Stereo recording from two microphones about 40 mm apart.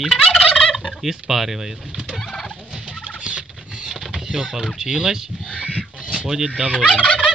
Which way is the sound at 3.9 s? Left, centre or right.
Centre.